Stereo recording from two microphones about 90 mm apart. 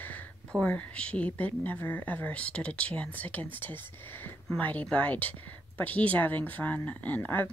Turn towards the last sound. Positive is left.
turn(degrees=20)  # may be behind; listen again after turning